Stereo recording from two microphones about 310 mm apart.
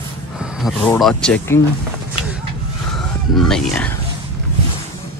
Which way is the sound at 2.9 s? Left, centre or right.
Centre.